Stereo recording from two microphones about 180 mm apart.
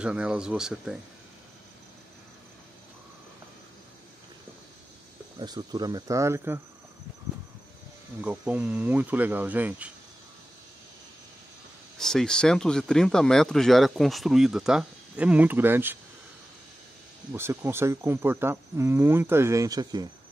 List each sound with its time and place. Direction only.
0.0 s speech: 5° right (ahead or behind)
5.4 s speech: 25° right (ahead or behind)
8.2 s speech: 10° right (ahead or behind)
12.0 s speech: 5° left (ahead or behind)
17.3 s speech: 15° right (ahead or behind)